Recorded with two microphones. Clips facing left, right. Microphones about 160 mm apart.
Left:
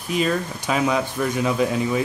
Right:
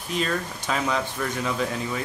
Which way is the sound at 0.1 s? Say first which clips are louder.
Left 5 dB; 10° left (ahead or behind).